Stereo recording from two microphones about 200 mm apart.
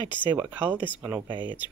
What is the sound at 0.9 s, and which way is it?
Speech, 15° right (ahead or behind).